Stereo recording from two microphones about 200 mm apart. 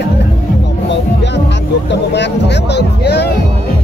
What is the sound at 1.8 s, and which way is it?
Speech, 60° left (ahead or behind).